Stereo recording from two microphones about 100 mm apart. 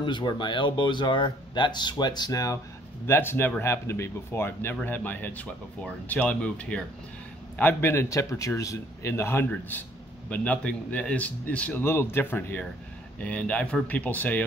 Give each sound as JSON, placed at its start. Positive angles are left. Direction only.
{"t": 0.0, "sound": "speech", "side_deg": 50}
{"t": 3.1, "sound": "speech", "side_deg": 20}